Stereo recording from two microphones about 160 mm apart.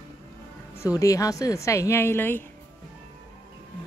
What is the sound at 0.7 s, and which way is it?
Speech, 20° left (ahead or behind).